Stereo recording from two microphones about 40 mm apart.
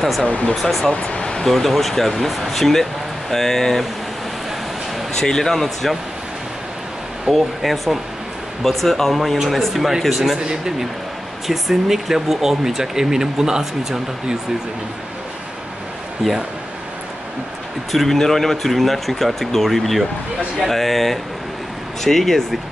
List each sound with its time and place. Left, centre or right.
0.3 s speech: left
0.6 s speech: centre
1.2 s a sound: centre
1.5 s speech: centre
5.2 s speech: centre
7.2 s speech: centre
10.4 s speech: centre
11.4 s speech: centre
17.9 s speech: centre